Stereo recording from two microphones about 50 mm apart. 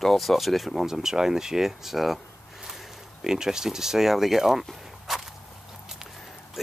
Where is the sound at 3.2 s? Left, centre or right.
Centre.